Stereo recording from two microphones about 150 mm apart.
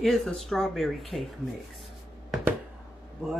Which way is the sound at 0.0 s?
Centre (ahead or behind).